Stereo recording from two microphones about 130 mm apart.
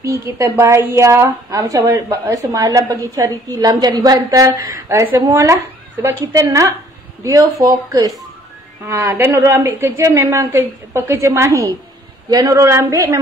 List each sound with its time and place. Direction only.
0.0 s a woman's voice: 25° right (ahead or behind)